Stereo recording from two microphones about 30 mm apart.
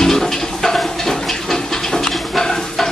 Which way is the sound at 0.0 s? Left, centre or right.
Centre.